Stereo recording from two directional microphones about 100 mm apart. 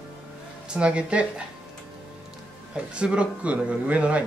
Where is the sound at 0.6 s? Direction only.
10° right (ahead or behind).